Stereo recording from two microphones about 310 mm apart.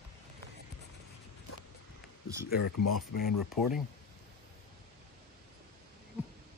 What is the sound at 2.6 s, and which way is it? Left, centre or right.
Speech, left.